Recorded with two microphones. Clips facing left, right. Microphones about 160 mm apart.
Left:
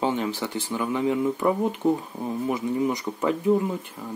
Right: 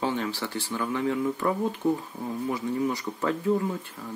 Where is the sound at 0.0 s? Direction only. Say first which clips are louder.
Left 3 dB; 20° left (ahead or behind).